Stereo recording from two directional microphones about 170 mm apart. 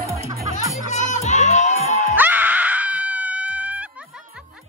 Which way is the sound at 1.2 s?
45° left (ahead or behind).